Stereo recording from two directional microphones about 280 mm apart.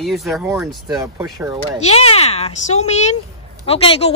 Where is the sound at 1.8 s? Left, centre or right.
Left.